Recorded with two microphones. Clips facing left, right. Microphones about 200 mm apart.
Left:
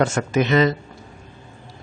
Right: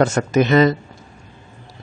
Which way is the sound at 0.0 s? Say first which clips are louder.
Right 3 dB; 40° right (ahead or behind).